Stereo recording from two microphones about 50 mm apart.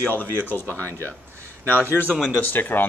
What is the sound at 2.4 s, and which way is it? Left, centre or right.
Speech, left.